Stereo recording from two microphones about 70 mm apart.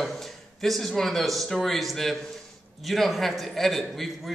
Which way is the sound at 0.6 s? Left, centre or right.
Centre.